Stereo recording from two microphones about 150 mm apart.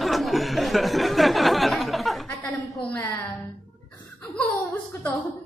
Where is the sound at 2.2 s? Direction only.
15° left (ahead or behind).